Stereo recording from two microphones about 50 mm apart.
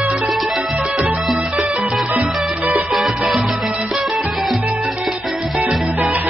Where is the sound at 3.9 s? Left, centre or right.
Centre.